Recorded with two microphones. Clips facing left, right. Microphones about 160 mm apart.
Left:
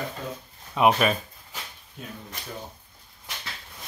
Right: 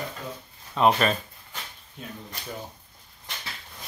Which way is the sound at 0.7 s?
10° left (ahead or behind).